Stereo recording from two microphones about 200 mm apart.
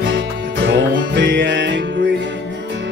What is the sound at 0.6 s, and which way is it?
Music, 60° right (ahead or behind).